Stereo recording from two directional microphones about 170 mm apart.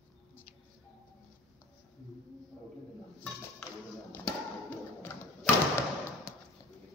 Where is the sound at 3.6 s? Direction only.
5° left (ahead or behind).